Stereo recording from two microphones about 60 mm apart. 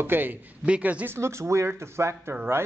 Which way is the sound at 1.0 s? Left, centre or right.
Right.